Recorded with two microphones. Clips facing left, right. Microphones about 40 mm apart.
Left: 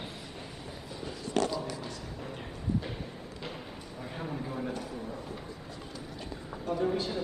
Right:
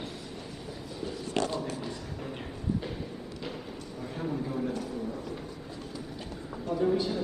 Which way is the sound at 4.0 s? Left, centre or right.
Centre.